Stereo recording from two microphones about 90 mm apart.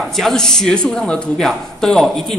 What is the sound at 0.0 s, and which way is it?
Speech, 5° left (ahead or behind).